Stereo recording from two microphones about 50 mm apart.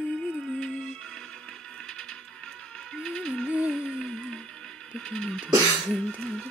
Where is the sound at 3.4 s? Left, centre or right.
Right.